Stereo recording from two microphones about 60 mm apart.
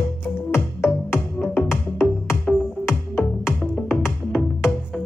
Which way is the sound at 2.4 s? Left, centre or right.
Centre.